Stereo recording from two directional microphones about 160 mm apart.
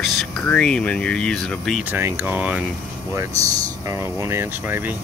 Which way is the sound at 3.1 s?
20° right (ahead or behind).